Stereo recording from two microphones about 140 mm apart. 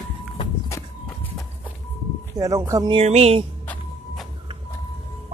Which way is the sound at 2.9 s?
50° right (ahead or behind).